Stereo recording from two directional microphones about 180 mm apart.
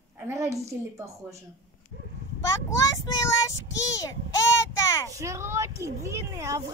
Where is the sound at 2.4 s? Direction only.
15° left (ahead or behind).